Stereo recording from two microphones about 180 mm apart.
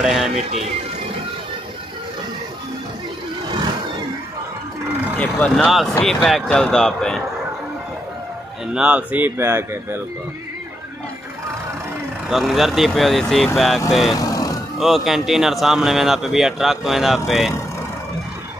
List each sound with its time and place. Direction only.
0.0 s speech: centre (ahead or behind)
0.4 s speech: 35° right (ahead or behind)
5.1 s speech: 5° left (ahead or behind)
8.7 s speech: 5° right (ahead or behind)
12.3 s speech: centre (ahead or behind)
14.1 s vehicle: 20° left (ahead or behind)
14.8 s speech: centre (ahead or behind)